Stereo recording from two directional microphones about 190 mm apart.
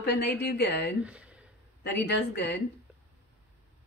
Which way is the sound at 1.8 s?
60° left (ahead or behind).